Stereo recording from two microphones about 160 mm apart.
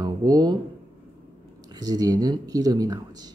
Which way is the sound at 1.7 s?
25° right (ahead or behind).